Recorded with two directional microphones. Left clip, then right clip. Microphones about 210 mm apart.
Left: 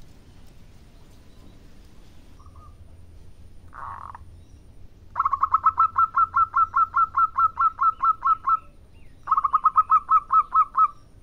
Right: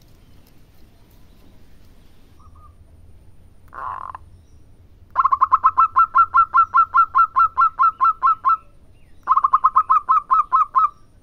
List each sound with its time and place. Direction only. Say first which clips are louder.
3.7 s frog: right 7 dB; 25° right (ahead or behind)
5.1 s bird: right 6 dB; 25° right (ahead or behind)